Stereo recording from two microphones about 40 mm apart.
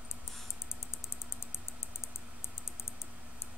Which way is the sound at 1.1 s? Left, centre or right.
Left.